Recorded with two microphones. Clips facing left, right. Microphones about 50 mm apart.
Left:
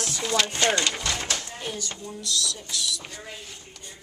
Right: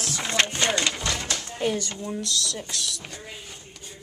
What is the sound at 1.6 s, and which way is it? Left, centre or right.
Speech, right.